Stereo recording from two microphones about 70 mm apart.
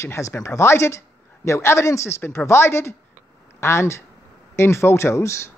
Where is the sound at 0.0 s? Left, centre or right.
Left.